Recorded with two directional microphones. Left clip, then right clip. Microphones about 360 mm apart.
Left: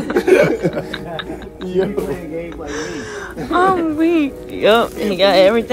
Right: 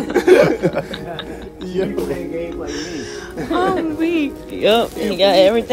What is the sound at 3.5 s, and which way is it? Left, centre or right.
Speech, centre.